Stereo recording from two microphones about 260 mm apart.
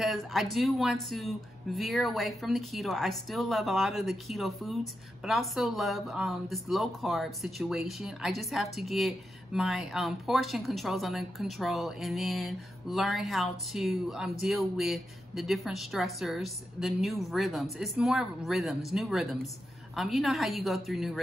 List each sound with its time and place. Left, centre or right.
0.0 s speech: centre